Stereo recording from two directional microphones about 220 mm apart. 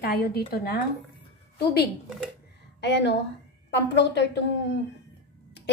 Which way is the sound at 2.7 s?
50° left (ahead or behind).